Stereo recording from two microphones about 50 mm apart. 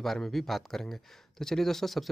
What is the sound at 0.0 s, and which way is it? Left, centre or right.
Speech, centre.